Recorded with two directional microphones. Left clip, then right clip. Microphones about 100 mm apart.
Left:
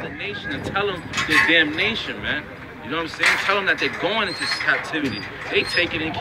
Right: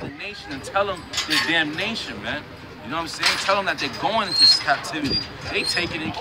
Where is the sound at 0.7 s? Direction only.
55° right (ahead or behind).